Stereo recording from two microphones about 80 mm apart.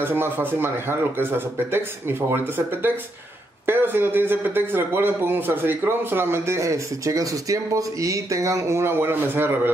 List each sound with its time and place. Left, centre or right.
0.0 s a man's voice: right